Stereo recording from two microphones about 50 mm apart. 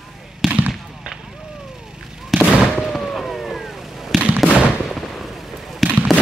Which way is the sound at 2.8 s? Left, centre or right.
Centre.